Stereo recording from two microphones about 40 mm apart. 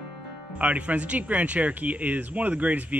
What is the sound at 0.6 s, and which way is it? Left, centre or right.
Speech, right.